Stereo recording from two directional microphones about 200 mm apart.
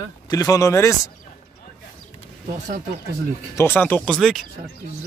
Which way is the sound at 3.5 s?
10° left (ahead or behind).